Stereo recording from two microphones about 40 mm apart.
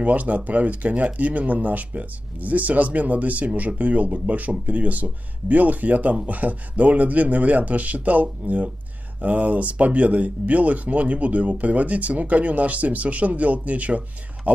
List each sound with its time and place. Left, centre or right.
0.0 s speech: right